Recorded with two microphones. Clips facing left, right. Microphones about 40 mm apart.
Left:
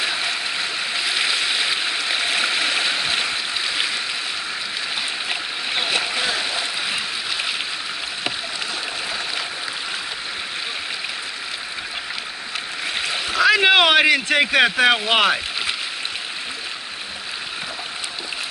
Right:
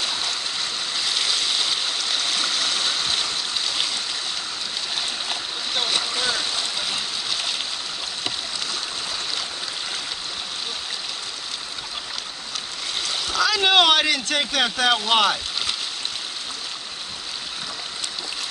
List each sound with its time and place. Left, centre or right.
0.0 s stream: left
5.3 s splash: left
12.9 s a sound: left